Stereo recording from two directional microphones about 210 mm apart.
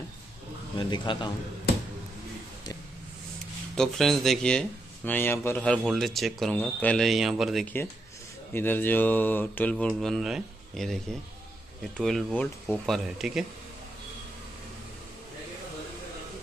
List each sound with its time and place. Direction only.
0.7 s a man's voice: 20° left (ahead or behind)
3.7 s speech: centre (ahead or behind)
8.5 s mantra: 10° left (ahead or behind)
12.0 s speech: centre (ahead or behind)